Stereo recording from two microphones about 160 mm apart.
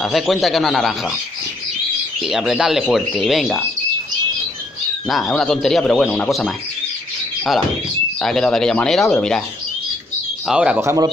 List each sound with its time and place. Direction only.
0.0 s speech: centre (ahead or behind)
2.2 s speech: 5° right (ahead or behind)
5.0 s speech: centre (ahead or behind)
8.2 s speech: 5° left (ahead or behind)
10.4 s speech: 5° right (ahead or behind)
10.8 s speech: 15° right (ahead or behind)